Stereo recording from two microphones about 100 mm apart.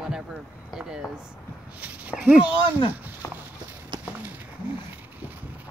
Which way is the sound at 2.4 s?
50° left (ahead or behind).